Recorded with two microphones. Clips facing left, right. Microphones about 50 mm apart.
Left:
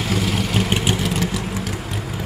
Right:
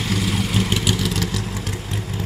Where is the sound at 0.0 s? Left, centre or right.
Centre.